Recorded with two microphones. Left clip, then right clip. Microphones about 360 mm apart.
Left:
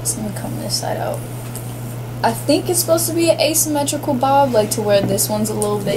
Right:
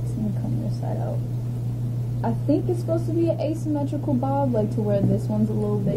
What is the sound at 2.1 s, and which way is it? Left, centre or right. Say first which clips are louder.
A woman's voice: left 8 dB; centre.